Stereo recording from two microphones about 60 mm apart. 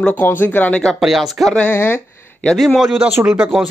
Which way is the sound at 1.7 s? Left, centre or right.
Left.